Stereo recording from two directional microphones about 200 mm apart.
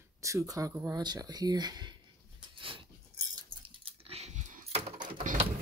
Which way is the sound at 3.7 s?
30° right (ahead or behind).